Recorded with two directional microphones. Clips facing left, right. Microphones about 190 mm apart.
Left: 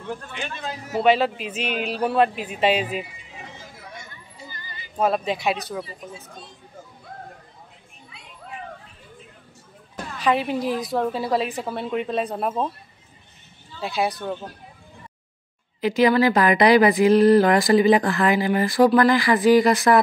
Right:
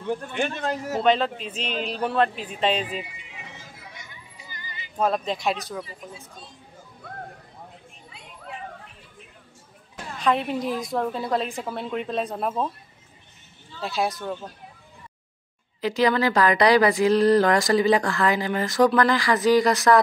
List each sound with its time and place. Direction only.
0.3 s a man's voice: 55° right (ahead or behind)
0.9 s speech: 10° left (ahead or behind)
3.9 s a sound: 15° right (ahead or behind)
5.0 s a woman's voice: 5° left (ahead or behind)
10.1 s a woman's voice: centre (ahead or behind)
13.7 s a woman's voice: centre (ahead or behind)
15.8 s speech: 15° left (ahead or behind)